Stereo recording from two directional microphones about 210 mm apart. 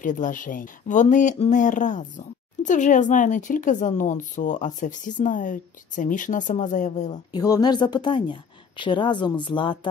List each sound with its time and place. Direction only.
0.0 s speech: 40° left (ahead or behind)
7.3 s a woman's voice: 20° left (ahead or behind)